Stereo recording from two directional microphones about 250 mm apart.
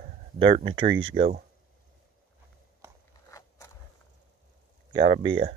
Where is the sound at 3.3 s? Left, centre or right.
Centre.